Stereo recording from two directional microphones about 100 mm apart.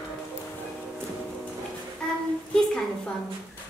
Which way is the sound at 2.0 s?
10° left (ahead or behind).